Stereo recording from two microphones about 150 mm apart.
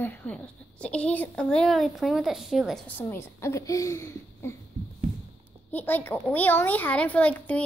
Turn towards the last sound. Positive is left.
turn(degrees=10)  # may be behind; listen again after turning